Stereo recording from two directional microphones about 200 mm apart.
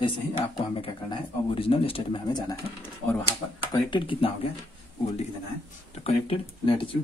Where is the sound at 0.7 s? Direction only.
25° left (ahead or behind).